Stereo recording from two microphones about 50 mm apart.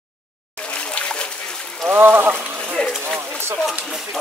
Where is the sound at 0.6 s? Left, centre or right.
Left.